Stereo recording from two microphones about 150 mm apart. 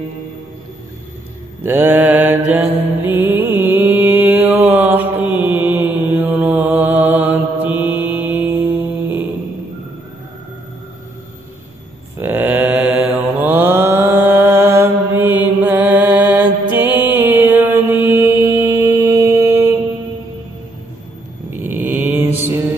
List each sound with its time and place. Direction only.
1.6 s mantra: 15° right (ahead or behind)
12.2 s mantra: 15° right (ahead or behind)
21.6 s mantra: 15° right (ahead or behind)